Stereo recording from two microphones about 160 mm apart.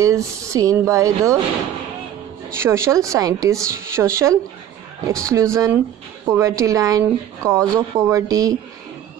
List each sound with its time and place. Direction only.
0.0 s speech: 20° right (ahead or behind)
2.5 s speech: 15° right (ahead or behind)